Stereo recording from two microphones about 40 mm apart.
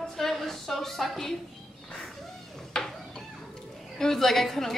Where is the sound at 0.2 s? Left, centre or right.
Centre.